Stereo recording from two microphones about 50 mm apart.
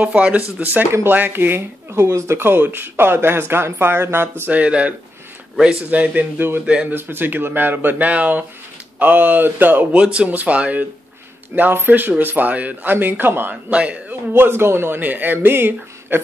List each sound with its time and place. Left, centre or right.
0.0 s speech: right
0.6 s speech: right
2.0 s speech: right
2.3 s speech: right
4.5 s speech: right
5.9 s speech: right
6.9 s speech: right
9.9 s speech: right
11.5 s speech: right
13.7 s speech: right
14.3 s speech: right
15.3 s speech: right